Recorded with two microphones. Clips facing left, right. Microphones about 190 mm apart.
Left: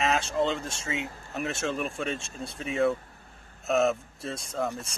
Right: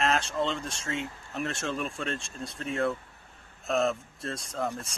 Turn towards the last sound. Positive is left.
turn(degrees=0)  # may be behind; listen again after turning